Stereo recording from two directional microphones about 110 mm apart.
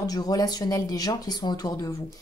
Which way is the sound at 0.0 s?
35° left (ahead or behind).